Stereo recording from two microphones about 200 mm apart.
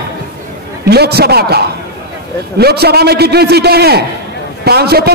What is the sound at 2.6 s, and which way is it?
A man's voice, 55° right (ahead or behind).